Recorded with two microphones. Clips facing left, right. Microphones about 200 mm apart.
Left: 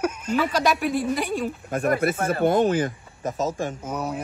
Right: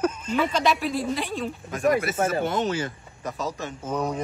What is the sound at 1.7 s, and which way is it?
Speech, 55° left (ahead or behind).